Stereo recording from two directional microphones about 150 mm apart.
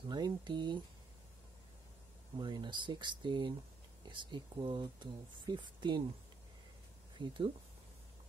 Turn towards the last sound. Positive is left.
turn(degrees=-30)  # may be behind; listen again after turning